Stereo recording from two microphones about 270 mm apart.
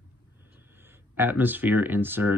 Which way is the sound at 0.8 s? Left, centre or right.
Centre.